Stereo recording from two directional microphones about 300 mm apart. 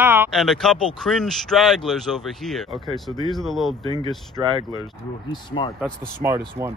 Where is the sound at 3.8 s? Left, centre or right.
Centre.